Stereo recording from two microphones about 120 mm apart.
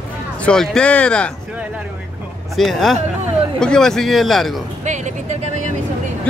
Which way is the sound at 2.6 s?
Centre (ahead or behind).